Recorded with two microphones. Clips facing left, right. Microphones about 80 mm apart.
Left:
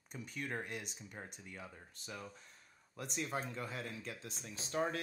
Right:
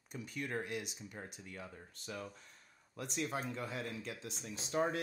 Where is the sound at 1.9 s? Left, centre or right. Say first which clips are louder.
Right 4 dB; right.